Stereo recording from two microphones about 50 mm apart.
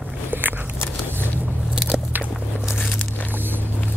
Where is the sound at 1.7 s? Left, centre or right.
Centre.